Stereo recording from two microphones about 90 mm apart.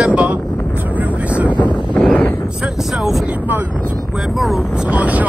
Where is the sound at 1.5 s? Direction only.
60° left (ahead or behind).